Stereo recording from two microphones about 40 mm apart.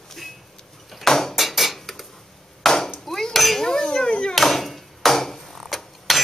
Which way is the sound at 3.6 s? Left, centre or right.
Centre.